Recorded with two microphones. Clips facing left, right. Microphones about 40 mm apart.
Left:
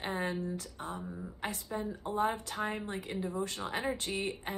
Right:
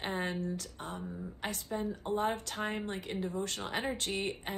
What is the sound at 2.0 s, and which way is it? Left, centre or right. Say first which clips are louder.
Speech: left 1 dB; right.